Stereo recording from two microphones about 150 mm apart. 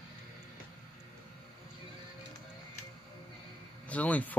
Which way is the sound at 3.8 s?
10° left (ahead or behind).